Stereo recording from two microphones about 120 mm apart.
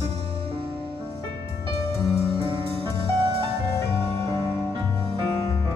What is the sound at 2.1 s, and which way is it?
Music, 50° right (ahead or behind).